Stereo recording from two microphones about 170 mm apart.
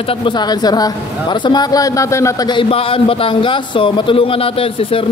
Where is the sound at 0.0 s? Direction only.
30° left (ahead or behind).